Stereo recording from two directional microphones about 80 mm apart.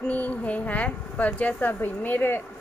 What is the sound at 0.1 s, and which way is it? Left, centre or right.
A woman's voice, centre.